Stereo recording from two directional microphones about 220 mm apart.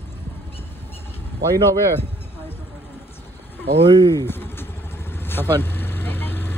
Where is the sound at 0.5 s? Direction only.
10° left (ahead or behind).